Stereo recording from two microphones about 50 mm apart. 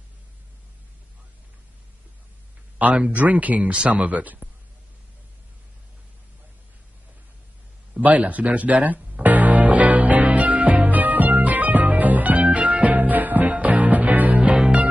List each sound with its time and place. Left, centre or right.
2.8 s speech: right
8.0 s speech: right
9.1 s music: right